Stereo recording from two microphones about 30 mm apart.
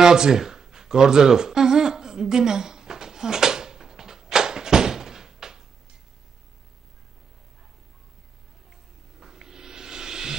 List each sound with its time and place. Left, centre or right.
0.0 s humming: right
9.2 s music: centre